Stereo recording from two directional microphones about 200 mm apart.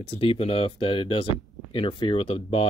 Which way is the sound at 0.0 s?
30° left (ahead or behind).